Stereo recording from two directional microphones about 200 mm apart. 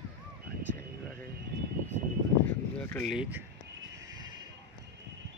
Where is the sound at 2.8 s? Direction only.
5° left (ahead or behind).